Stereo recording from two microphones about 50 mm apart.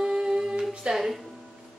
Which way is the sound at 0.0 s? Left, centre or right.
Centre.